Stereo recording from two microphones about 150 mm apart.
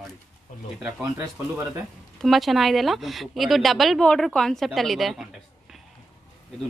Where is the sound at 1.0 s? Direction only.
20° right (ahead or behind).